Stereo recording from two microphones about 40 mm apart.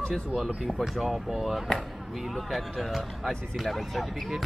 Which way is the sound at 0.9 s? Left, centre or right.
Centre.